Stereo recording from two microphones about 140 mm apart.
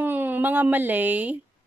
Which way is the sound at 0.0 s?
15° right (ahead or behind).